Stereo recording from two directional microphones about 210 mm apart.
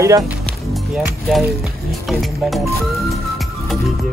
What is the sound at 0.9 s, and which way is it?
Speech, centre (ahead or behind).